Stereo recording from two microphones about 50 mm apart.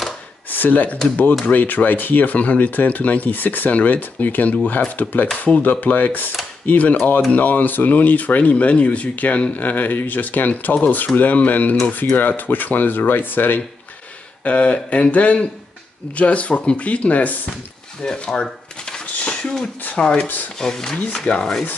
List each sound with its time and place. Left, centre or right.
0.5 s speech: left
14.4 s speech: left
18.0 s speech: centre
19.1 s a sound: left
20.0 s speech: centre
20.5 s speech: centre